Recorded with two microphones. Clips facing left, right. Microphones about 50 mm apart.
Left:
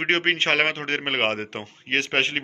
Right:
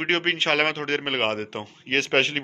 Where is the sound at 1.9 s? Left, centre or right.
Centre.